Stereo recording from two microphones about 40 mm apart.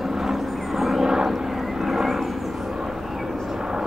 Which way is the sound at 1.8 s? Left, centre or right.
Centre.